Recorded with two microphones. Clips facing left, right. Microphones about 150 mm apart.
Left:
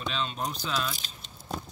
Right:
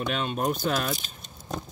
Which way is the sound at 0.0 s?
55° right (ahead or behind).